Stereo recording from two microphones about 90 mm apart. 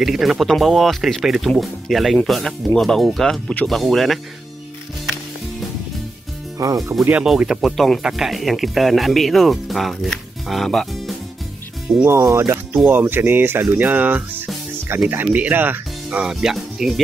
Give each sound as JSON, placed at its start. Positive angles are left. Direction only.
{"t": 0.0, "sound": "speech", "side_deg": -5}
{"t": 6.6, "sound": "speech", "side_deg": -40}
{"t": 7.2, "sound": "speech", "side_deg": -5}
{"t": 12.0, "sound": "speech", "side_deg": -30}
{"t": 12.7, "sound": "speech", "side_deg": -20}